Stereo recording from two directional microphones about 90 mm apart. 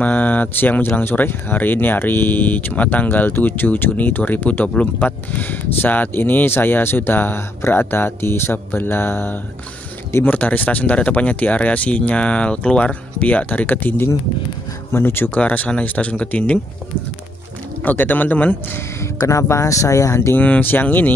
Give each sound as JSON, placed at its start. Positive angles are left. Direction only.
{"t": 0.0, "sound": "speech", "side_deg": 20}
{"t": 17.8, "sound": "speech", "side_deg": 20}
{"t": 20.3, "sound": "speech", "side_deg": 20}